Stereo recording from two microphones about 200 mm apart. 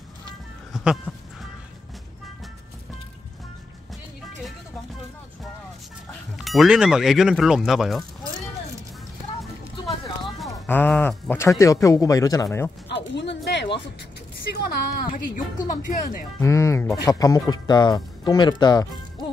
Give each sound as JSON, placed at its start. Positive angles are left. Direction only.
{"t": 1.1, "sound": "music", "side_deg": -5}
{"t": 6.3, "sound": "speech", "side_deg": 0}
{"t": 10.5, "sound": "speech", "side_deg": 10}
{"t": 12.8, "sound": "a sound", "side_deg": 60}
{"t": 14.5, "sound": "a woman's voice", "side_deg": 50}
{"t": 16.3, "sound": "speech", "side_deg": 15}